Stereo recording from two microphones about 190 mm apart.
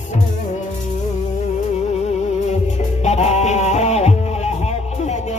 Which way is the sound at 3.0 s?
35° left (ahead or behind).